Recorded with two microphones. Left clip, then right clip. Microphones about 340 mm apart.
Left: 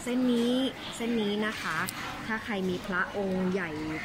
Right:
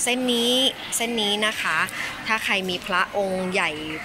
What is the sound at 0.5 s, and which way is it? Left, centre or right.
A woman's voice, centre.